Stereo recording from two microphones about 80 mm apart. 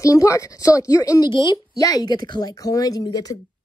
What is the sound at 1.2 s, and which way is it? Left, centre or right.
Speech, left.